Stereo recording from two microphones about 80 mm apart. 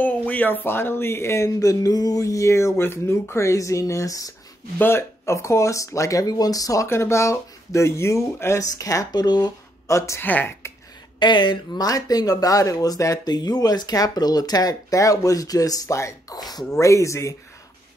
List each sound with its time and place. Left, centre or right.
0.0 s speech: left
4.7 s speech: left
6.9 s speech: left
9.8 s speech: left
10.2 s speech: left
11.1 s speech: left
11.8 s speech: left
16.3 s speech: left
16.8 s speech: left